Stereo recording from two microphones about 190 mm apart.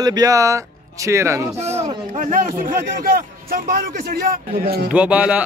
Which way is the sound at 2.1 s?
40° right (ahead or behind).